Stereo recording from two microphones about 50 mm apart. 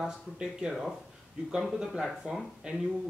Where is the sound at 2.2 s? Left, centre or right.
Centre.